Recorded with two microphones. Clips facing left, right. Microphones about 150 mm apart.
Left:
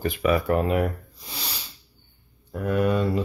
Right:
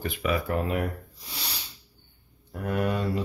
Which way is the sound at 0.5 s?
65° left (ahead or behind).